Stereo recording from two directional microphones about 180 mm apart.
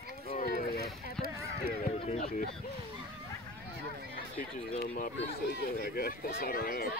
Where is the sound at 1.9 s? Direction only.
35° left (ahead or behind).